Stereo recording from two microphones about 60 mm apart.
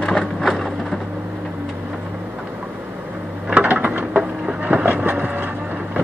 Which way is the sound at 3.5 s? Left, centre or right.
Right.